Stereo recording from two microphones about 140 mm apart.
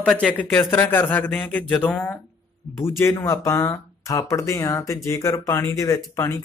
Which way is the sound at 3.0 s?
20° left (ahead or behind).